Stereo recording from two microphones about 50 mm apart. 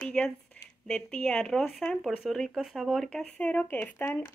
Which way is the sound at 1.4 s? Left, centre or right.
Centre.